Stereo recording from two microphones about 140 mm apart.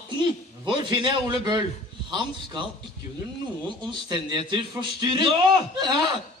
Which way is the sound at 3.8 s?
30° right (ahead or behind).